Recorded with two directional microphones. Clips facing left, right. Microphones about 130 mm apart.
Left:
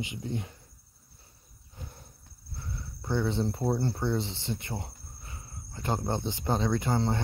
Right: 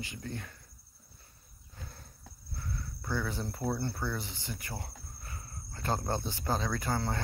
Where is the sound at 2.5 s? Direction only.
25° left (ahead or behind).